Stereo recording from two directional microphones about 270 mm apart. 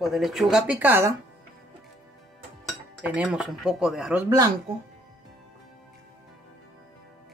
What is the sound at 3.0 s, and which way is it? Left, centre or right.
Speech, centre.